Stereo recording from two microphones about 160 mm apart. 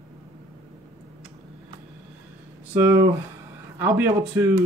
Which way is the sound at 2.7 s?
15° right (ahead or behind).